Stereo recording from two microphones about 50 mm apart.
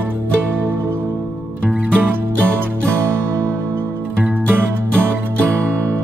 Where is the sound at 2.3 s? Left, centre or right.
Left.